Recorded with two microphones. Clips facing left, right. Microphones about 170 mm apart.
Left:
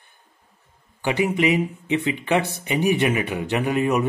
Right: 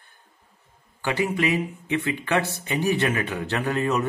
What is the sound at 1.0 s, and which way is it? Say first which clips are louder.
Speech: left 3 dB; 20° left (ahead or behind).